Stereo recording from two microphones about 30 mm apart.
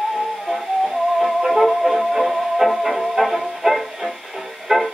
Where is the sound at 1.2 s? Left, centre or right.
Centre.